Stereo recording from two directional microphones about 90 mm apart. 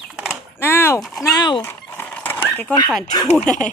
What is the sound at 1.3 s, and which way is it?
Dog, 55° left (ahead or behind).